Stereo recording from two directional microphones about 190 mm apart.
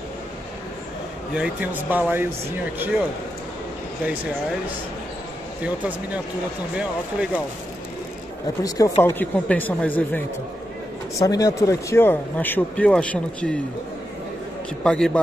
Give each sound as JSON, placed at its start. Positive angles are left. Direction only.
{"t": 1.3, "sound": "speech", "side_deg": -5}
{"t": 6.8, "sound": "speech", "side_deg": -5}
{"t": 8.6, "sound": "speech", "side_deg": 20}
{"t": 14.8, "sound": "a man's voice", "side_deg": 5}